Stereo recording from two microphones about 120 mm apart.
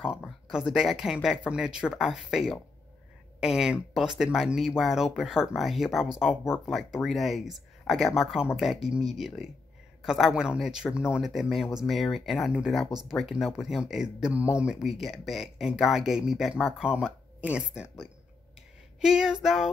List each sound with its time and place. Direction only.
0.5 s speech: 5° right (ahead or behind)
18.9 s speech: 5° right (ahead or behind)